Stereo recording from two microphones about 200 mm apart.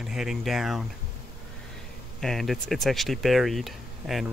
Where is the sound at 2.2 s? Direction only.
Centre (ahead or behind).